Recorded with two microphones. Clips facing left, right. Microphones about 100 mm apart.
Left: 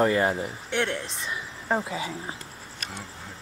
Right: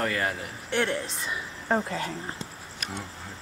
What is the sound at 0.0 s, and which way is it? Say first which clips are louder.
Speech: left 6 dB; 25° left (ahead or behind).